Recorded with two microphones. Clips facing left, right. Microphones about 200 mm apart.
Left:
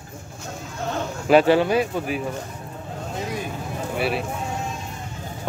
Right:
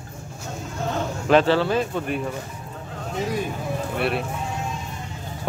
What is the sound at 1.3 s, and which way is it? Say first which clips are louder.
Speech: left 2 dB; 15° left (ahead or behind).